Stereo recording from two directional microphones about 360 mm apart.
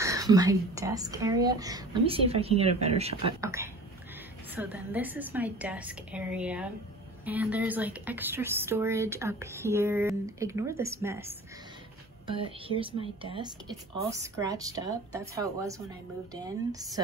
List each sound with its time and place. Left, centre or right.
0.0 s a woman's voice: centre